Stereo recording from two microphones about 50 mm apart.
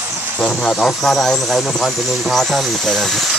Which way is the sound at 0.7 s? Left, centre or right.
Centre.